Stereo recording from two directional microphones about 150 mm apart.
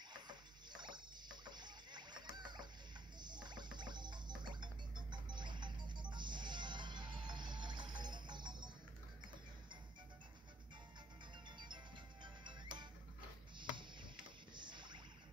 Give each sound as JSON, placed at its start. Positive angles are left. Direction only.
{"t": 0.1, "sound": "rowboat", "side_deg": -30}
{"t": 3.2, "sound": "music", "side_deg": -30}
{"t": 11.4, "sound": "music", "side_deg": -30}
{"t": 14.5, "sound": "a sound", "side_deg": -30}